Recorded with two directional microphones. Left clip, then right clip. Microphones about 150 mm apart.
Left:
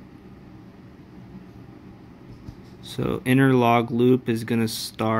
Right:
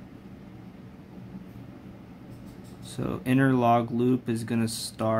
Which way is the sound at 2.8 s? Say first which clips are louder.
Left 6 dB; 15° left (ahead or behind).